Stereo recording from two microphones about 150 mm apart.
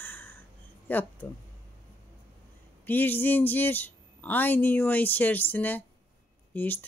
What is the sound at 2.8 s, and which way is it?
Speech, 15° left (ahead or behind).